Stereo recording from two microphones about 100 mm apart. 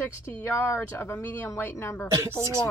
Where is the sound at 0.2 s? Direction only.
30° left (ahead or behind).